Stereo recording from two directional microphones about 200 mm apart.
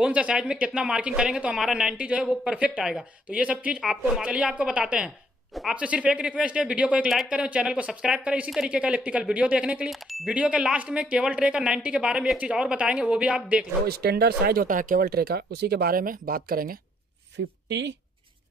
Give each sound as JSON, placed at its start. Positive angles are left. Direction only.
{"t": 0.0, "sound": "speech", "side_deg": -5}
{"t": 13.8, "sound": "speech", "side_deg": -50}
{"t": 17.6, "sound": "speech", "side_deg": -60}